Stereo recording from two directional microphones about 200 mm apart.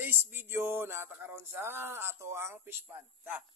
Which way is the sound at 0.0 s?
10° right (ahead or behind).